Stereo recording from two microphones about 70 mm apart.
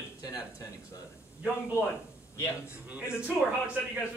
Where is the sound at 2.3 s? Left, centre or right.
Left.